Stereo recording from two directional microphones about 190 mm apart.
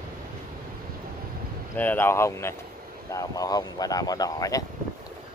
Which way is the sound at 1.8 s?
10° left (ahead or behind).